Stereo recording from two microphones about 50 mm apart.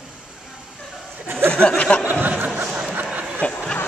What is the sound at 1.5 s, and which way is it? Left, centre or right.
Speech, left.